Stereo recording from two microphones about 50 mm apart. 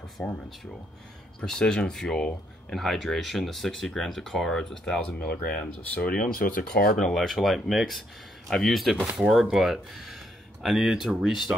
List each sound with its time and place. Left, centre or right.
0.2 s speech: left
1.4 s speech: centre
2.7 s speech: centre
7.2 s speech: centre